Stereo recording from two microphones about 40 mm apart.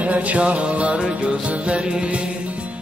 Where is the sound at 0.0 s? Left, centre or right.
Right.